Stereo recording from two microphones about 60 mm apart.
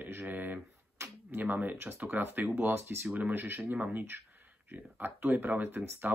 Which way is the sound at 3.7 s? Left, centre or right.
Right.